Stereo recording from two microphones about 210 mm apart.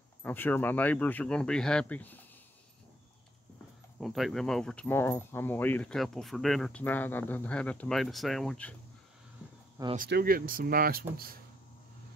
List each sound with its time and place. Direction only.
0.2 s speech: 10° left (ahead or behind)
4.0 s speech: centre (ahead or behind)
9.9 s speech: 45° right (ahead or behind)